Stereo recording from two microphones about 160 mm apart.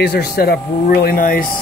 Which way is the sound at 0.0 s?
80° left.